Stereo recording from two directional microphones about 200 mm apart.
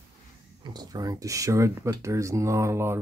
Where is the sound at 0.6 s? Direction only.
20° right (ahead or behind).